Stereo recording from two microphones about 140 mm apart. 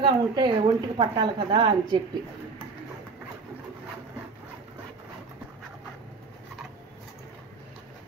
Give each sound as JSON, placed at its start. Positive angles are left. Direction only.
{"t": 0.0, "sound": "a woman's voice", "side_deg": -35}